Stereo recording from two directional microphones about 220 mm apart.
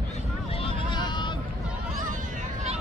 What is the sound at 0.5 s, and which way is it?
Vehicle, 25° left (ahead or behind).